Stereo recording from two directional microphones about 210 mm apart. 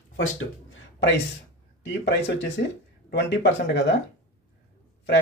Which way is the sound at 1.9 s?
55° left (ahead or behind).